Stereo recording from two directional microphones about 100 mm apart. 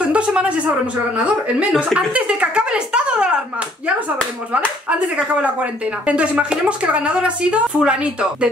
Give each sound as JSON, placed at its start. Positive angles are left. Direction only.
{"t": 0.0, "sound": "a sound", "side_deg": -10}
{"t": 1.1, "sound": "speech", "side_deg": -10}
{"t": 4.8, "sound": "speech", "side_deg": -15}